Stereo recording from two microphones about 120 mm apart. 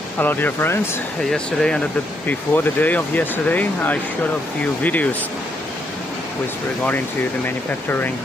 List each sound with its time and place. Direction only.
0.2 s speech: 15° left (ahead or behind)
1.3 s speech: 5° left (ahead or behind)
7.4 s speech: 15° left (ahead or behind)